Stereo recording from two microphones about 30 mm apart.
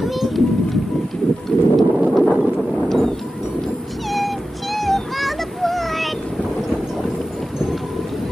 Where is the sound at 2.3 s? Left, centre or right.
Centre.